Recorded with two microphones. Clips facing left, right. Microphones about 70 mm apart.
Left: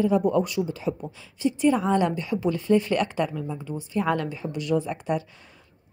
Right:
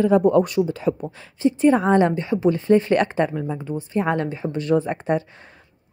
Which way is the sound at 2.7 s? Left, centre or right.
Right.